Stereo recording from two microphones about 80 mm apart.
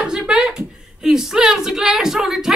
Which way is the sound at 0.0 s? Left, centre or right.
Centre.